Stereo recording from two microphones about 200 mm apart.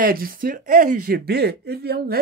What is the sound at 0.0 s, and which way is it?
Speech, 45° right (ahead or behind).